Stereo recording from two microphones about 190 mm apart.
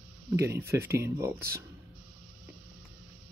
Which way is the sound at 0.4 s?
15° right (ahead or behind).